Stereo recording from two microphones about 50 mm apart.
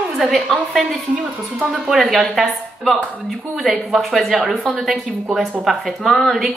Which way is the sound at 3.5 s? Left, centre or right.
Centre.